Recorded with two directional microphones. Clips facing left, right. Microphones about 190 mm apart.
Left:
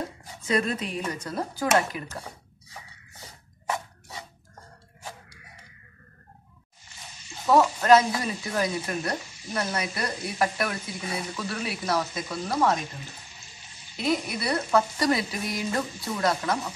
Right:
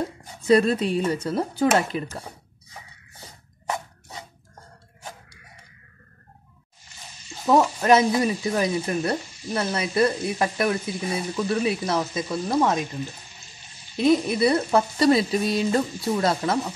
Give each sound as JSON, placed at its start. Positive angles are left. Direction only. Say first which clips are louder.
{"t": 0.5, "sound": "speech", "louder": "right 8 dB", "side_deg": -35}
{"t": 7.4, "sound": "speech", "louder": "right 1 dB", "side_deg": -20}
{"t": 13.9, "sound": "speech", "louder": "right 8 dB", "side_deg": -25}